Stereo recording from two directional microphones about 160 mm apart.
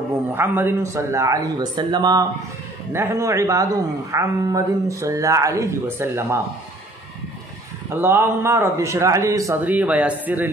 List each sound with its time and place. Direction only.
0.3 s a man's voice: 15° right (ahead or behind)
2.9 s a man's voice: 15° right (ahead or behind)
7.9 s speech: 15° right (ahead or behind)